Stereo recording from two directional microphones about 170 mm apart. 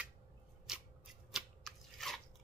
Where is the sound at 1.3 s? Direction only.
Centre (ahead or behind).